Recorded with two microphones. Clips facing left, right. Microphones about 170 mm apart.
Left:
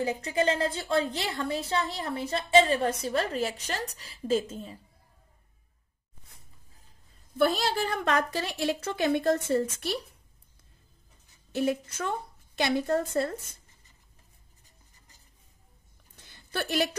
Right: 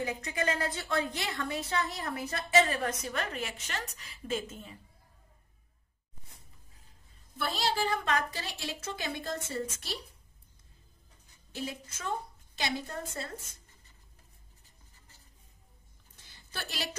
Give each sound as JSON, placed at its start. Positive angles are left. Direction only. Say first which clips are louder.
{"t": 0.0, "sound": "a woman's voice", "louder": "left 6 dB", "side_deg": 30}
{"t": 7.3, "sound": "a woman's voice", "louder": "left 6 dB", "side_deg": 50}
{"t": 11.5, "sound": "a woman's voice", "louder": "left 11 dB", "side_deg": 60}
{"t": 16.5, "sound": "a woman's voice", "louder": "left 12 dB", "side_deg": 55}